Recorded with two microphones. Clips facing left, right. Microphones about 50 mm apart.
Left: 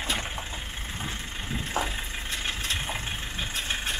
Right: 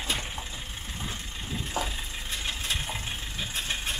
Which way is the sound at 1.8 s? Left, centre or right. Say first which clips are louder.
Left 2 dB; left.